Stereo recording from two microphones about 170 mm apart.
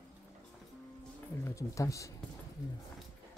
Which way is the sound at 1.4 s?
20° left (ahead or behind).